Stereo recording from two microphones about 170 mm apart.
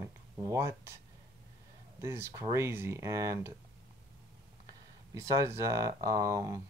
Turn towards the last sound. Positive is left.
turn(degrees=-20)  # may be behind; listen again after turning